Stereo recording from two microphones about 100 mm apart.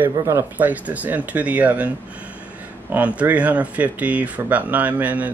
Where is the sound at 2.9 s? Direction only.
15° right (ahead or behind).